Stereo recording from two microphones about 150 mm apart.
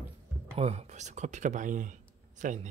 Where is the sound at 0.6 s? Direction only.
45° right (ahead or behind).